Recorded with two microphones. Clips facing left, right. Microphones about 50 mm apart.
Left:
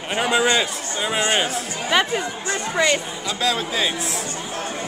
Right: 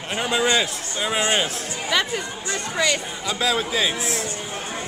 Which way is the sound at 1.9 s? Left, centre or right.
Left.